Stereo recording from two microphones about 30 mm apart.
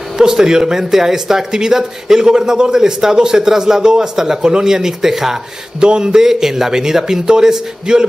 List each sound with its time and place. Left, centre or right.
0.2 s a man's voice: right
5.8 s a sound: right
6.1 s a man's voice: centre